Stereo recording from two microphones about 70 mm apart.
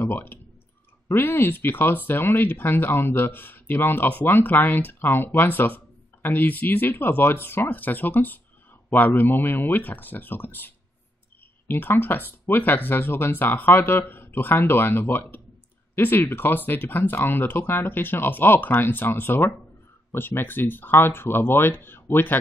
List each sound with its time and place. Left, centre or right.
0.0 s speech: left